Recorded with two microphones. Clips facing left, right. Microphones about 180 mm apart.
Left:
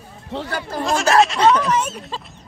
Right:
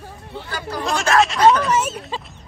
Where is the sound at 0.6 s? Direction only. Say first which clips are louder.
Left 2 dB; 50° left (ahead or behind).